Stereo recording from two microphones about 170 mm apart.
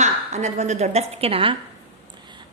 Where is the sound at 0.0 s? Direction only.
45° right (ahead or behind).